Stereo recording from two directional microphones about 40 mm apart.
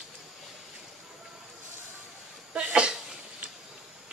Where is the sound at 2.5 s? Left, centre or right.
Right.